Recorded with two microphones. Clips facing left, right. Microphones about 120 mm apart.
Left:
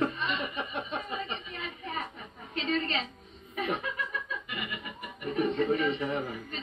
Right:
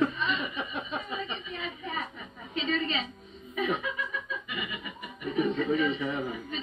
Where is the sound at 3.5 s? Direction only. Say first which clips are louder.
Right 2 dB; 50° left (ahead or behind).